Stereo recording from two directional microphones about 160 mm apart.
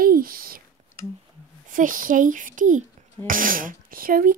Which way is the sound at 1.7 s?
55° right (ahead or behind).